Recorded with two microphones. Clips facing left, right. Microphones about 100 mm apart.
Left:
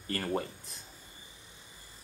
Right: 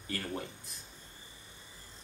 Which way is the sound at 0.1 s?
45° left (ahead or behind).